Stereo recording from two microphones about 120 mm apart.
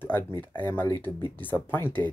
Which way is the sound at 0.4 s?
15° left (ahead or behind).